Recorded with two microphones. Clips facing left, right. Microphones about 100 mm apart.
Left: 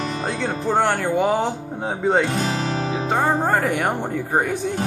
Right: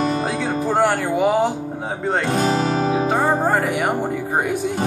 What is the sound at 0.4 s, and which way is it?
Speech, 5° right (ahead or behind).